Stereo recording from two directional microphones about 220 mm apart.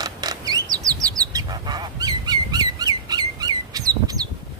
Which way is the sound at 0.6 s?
15° right (ahead or behind).